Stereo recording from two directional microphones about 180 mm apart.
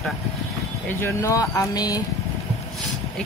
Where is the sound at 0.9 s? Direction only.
15° left (ahead or behind).